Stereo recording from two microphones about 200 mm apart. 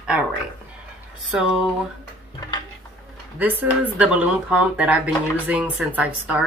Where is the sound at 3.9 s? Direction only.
5° right (ahead or behind).